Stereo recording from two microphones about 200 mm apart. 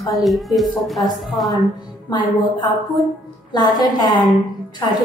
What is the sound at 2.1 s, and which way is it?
A woman's voice, 25° left (ahead or behind).